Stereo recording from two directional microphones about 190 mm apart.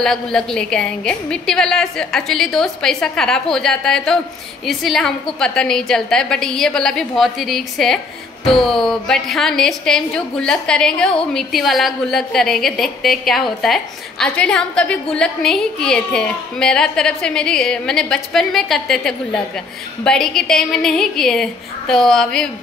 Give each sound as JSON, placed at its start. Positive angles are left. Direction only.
{"t": 0.0, "sound": "a woman's voice", "side_deg": 0}